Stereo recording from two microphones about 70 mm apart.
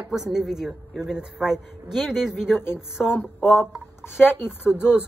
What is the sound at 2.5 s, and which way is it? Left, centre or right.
Speech, left.